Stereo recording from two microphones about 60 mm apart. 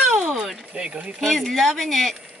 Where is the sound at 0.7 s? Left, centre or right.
Centre.